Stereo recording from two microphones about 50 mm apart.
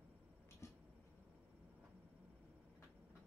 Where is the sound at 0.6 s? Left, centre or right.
Left.